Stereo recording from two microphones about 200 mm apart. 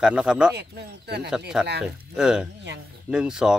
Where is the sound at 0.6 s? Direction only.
55° right (ahead or behind).